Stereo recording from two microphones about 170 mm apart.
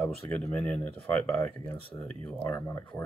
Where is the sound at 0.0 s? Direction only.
10° left (ahead or behind).